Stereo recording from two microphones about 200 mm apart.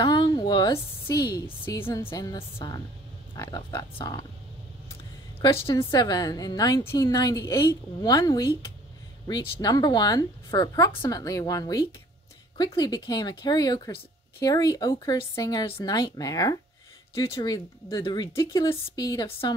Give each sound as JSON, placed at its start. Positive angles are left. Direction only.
{"t": 0.0, "sound": "a woman's voice", "side_deg": 25}
{"t": 5.7, "sound": "a woman's voice", "side_deg": 25}